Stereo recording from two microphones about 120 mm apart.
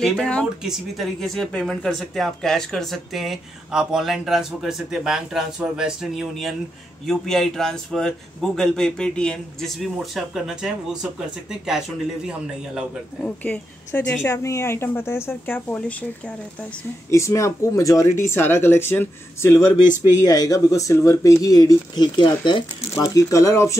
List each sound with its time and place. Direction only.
0.0 s a woman's voice: 5° left (ahead or behind)
13.2 s a woman's voice: 10° left (ahead or behind)
17.1 s speech: 25° left (ahead or behind)
20.2 s speech: 30° left (ahead or behind)
22.9 s speech: 25° left (ahead or behind)